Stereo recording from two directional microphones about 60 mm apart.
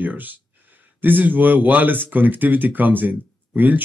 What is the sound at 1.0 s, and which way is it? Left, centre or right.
Speech, right.